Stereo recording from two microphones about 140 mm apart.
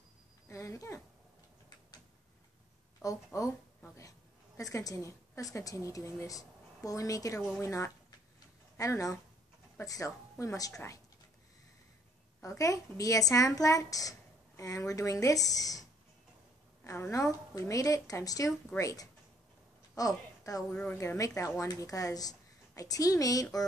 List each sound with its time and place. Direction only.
0.5 s speech: 20° left (ahead or behind)
3.0 s speech: 25° left (ahead or behind)
4.6 s a woman's voice: 25° left (ahead or behind)
12.4 s a woman's voice: 20° left (ahead or behind)
16.8 s a woman's voice: 20° left (ahead or behind)
20.7 s a woman's voice: 15° left (ahead or behind)